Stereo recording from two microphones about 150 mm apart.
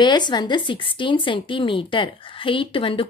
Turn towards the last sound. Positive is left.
turn(degrees=35)  # may be behind; listen again after turning